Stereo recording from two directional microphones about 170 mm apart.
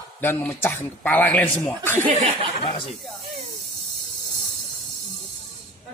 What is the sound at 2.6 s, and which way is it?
Speech, 30° left (ahead or behind).